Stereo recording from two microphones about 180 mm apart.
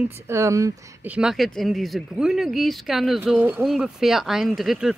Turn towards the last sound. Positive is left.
turn(degrees=0)  # may be behind; listen again after turning